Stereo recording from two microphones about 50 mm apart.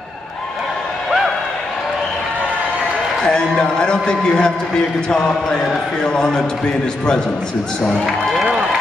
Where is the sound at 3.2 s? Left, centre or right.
Centre.